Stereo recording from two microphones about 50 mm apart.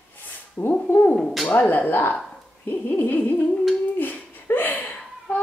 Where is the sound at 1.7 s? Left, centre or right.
Left.